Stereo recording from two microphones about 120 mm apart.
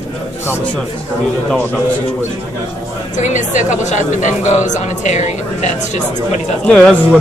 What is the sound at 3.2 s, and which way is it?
A woman's voice, 85° left.